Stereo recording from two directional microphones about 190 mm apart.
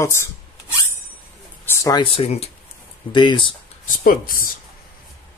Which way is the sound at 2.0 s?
30° left (ahead or behind).